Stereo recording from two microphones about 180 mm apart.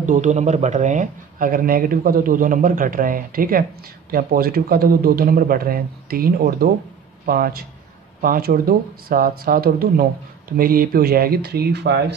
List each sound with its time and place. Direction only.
0.0 s speech: 45° right (ahead or behind); by 12.0 s 65° right (ahead or behind)